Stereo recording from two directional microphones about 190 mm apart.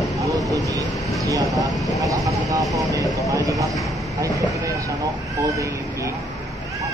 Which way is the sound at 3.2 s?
15° right (ahead or behind).